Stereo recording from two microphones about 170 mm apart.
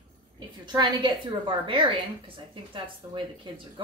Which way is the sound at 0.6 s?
25° right (ahead or behind).